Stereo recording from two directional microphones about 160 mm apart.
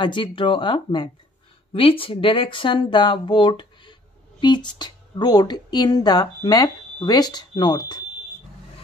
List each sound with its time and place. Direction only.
0.0 s speech: 30° left (ahead or behind)